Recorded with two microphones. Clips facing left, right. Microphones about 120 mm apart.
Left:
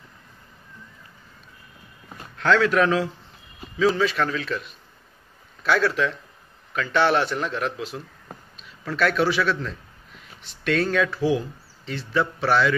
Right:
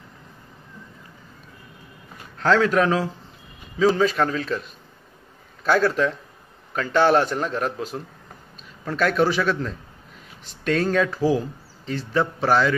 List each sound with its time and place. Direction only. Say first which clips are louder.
2.3 s a man's voice: right 1 dB; 35° right (ahead or behind)
5.6 s a man's voice: right 2 dB; 45° right (ahead or behind)